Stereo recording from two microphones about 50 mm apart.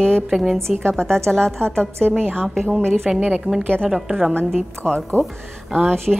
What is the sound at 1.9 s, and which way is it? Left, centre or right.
Speech, right.